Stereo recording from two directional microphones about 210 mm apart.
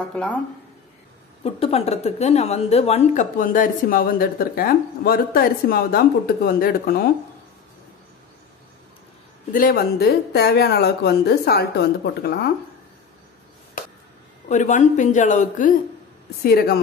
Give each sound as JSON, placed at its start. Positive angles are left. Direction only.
{"t": 0.1, "sound": "speech", "side_deg": 5}
{"t": 1.4, "sound": "a woman's voice", "side_deg": 30}
{"t": 9.5, "sound": "a woman's voice", "side_deg": 45}
{"t": 14.5, "sound": "a woman's voice", "side_deg": 35}